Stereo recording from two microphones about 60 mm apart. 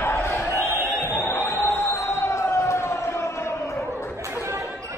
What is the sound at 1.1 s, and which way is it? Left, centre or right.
Crowd, left.